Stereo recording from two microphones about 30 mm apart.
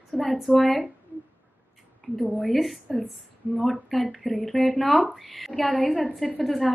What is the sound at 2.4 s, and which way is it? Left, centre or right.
Speech, centre.